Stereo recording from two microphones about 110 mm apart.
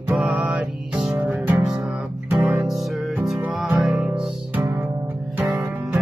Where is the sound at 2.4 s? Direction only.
5° right (ahead or behind).